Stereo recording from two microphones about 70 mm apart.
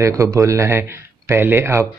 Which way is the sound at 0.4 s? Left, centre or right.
Right.